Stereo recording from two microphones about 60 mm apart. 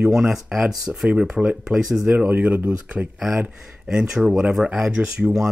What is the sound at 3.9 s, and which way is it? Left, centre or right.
Speech, centre.